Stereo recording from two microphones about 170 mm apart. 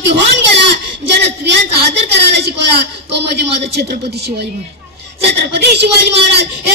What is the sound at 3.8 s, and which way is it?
Speech, 65° right (ahead or behind).